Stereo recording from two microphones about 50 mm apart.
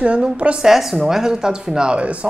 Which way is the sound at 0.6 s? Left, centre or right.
Centre.